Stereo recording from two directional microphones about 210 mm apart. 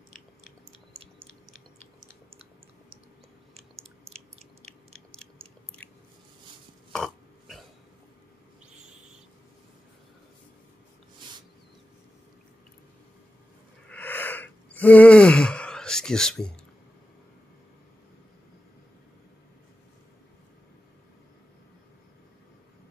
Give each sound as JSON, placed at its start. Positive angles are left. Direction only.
{"t": 4.4, "sound": "chewing", "side_deg": -30}
{"t": 5.1, "sound": "chewing", "side_deg": 5}
{"t": 6.9, "sound": "burping", "side_deg": 0}
{"t": 13.8, "sound": "a sound", "side_deg": 10}